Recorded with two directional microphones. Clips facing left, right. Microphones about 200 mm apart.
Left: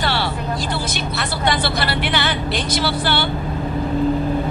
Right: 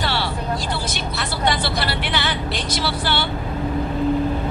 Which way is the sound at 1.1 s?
55° left (ahead or behind).